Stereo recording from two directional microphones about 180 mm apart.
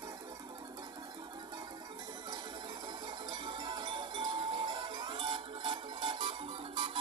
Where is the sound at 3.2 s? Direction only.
25° right (ahead or behind).